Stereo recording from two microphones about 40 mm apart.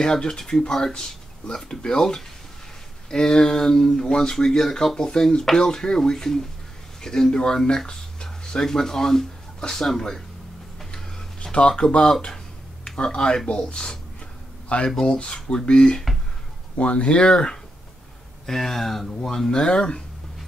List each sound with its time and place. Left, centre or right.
0.0 s speech: centre
11.5 s speech: left
14.7 s speech: left
18.5 s speech: centre
19.5 s speech: left